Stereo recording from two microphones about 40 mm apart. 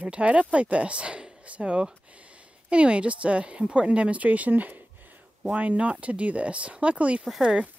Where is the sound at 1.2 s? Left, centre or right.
Centre.